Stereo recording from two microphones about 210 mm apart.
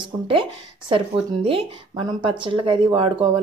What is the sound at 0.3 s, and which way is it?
Speech, 25° right (ahead or behind).